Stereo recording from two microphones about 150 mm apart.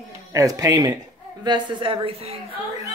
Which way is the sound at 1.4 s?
35° right (ahead or behind).